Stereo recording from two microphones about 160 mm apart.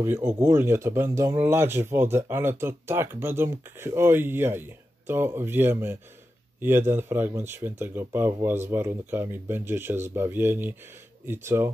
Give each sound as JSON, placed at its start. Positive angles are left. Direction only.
{"t": 0.0, "sound": "speech", "side_deg": -15}